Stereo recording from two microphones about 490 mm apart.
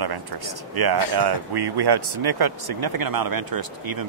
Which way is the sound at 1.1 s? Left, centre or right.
Right.